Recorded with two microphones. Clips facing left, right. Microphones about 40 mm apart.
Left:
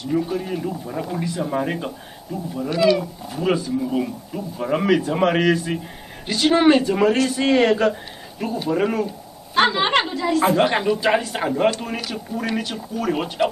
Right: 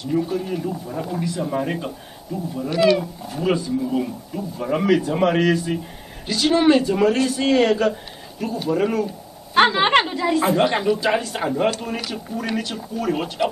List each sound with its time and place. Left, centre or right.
0.1 s speech: centre
9.5 s a woman's voice: centre
10.4 s speech: centre